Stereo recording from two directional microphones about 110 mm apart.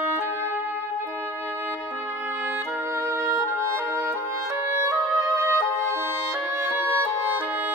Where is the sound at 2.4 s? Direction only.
20° right (ahead or behind).